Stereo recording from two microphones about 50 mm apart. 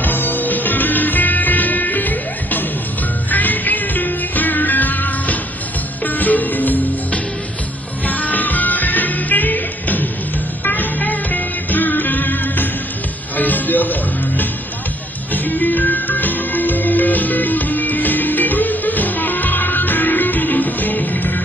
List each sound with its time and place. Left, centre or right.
0.0 s music: left